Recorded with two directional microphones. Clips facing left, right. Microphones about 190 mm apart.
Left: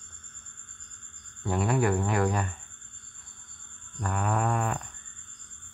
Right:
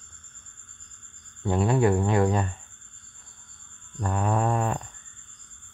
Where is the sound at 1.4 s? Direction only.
25° right (ahead or behind).